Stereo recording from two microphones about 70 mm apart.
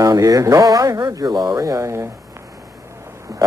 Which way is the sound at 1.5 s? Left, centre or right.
Right.